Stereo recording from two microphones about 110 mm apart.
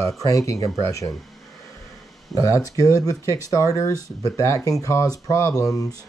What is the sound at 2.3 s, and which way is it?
Speech, 30° left (ahead or behind).